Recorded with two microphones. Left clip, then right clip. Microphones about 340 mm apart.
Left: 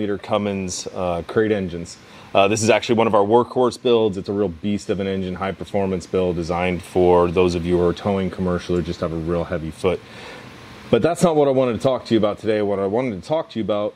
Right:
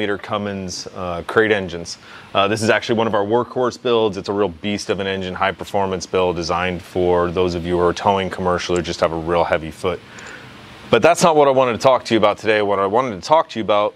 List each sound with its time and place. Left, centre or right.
0.3 s speech: right
1.3 s speech: right
2.3 s speech: right
4.2 s speech: right
6.6 s speech: right
7.8 s speech: right
9.8 s speech: right
10.9 s speech: right